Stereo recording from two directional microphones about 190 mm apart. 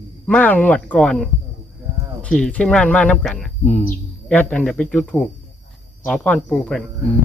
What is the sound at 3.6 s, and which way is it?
Speech, 35° left (ahead or behind).